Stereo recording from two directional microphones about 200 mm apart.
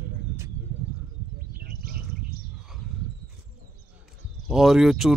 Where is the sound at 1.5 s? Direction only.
45° right (ahead or behind).